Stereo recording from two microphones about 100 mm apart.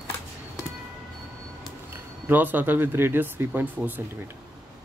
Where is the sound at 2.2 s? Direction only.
20° right (ahead or behind).